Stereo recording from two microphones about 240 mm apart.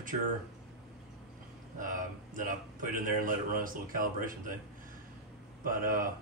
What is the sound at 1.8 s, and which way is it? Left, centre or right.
Speech, right.